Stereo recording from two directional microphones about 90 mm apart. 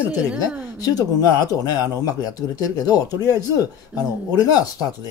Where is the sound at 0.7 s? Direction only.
45° left (ahead or behind).